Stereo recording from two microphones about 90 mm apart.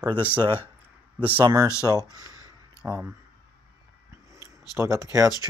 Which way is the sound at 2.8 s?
10° right (ahead or behind).